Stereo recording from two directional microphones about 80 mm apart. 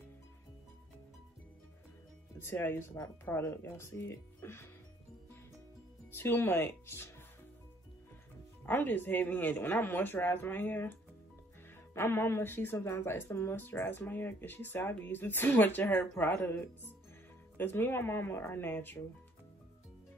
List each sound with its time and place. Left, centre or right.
2.3 s speech: left
6.1 s speech: left
8.6 s speech: left